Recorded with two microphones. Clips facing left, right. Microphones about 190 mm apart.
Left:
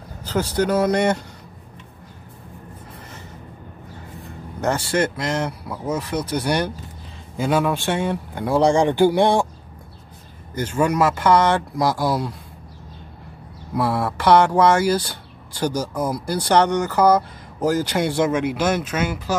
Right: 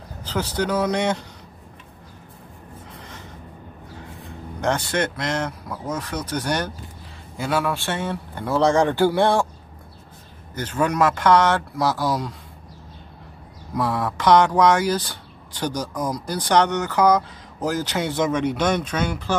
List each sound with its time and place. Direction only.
0.2 s vehicle: 10° left (ahead or behind)
0.6 s speech: 10° left (ahead or behind)
4.6 s speech: 5° left (ahead or behind)
10.5 s speech: 10° left (ahead or behind)
13.7 s speech: 10° left (ahead or behind)